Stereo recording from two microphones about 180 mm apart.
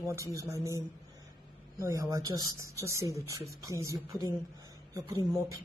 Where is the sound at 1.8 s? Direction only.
20° right (ahead or behind).